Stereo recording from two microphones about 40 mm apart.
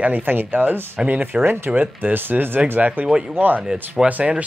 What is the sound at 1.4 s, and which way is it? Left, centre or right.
Speech, right.